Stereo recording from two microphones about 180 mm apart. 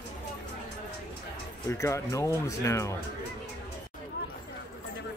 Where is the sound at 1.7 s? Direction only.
15° left (ahead or behind).